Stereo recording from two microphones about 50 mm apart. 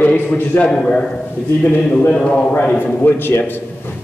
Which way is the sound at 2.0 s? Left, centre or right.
Left.